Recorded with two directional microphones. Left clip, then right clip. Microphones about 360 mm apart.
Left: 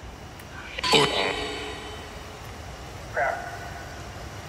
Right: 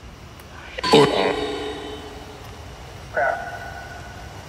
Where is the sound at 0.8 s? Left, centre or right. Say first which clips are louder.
Right 5 dB; right.